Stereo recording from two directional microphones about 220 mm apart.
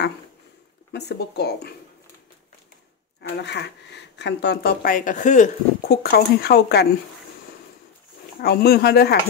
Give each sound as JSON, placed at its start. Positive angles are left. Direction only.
{"t": 0.9, "sound": "speech", "side_deg": 50}
{"t": 3.2, "sound": "speech", "side_deg": 50}
{"t": 8.4, "sound": "speech", "side_deg": 45}